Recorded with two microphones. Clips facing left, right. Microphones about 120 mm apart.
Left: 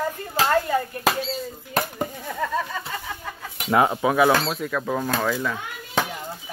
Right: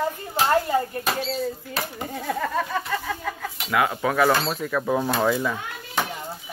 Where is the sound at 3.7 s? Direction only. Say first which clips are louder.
Left 4 dB; 30° left (ahead or behind).